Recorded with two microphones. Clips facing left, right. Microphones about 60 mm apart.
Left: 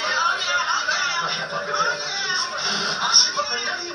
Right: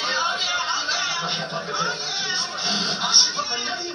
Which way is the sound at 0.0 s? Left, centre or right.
Left.